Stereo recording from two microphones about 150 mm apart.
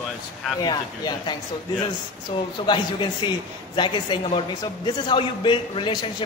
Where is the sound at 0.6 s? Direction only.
30° left (ahead or behind).